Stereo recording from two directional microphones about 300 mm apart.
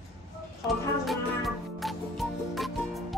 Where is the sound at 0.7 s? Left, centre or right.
Centre.